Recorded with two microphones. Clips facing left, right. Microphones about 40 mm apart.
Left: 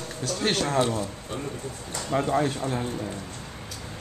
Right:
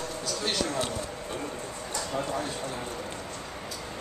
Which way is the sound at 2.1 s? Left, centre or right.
Left.